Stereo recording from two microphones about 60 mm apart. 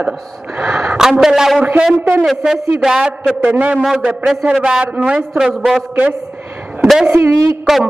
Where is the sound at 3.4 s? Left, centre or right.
Right.